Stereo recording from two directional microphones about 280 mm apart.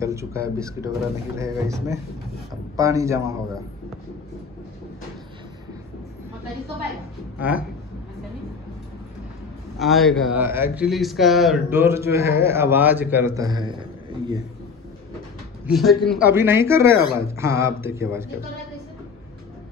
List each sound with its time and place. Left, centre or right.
0.0 s speech: centre
7.3 s a man's voice: centre
9.8 s speech: centre
15.6 s speech: centre